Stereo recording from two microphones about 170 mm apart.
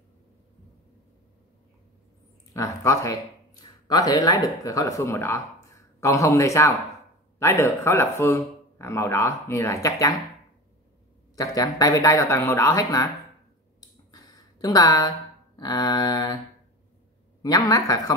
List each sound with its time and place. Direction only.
2.5 s speech: 20° left (ahead or behind)
11.3 s speech: 20° left (ahead or behind)
13.7 s a sound: 20° left (ahead or behind)
17.4 s speech: 20° left (ahead or behind)